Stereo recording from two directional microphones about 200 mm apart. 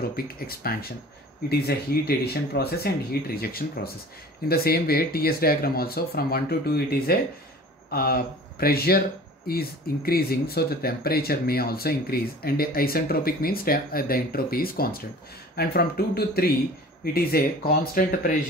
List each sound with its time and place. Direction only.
0.1 s speech: 50° left (ahead or behind)